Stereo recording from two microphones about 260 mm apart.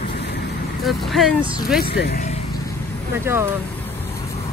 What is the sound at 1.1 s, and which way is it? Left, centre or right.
Speech, centre.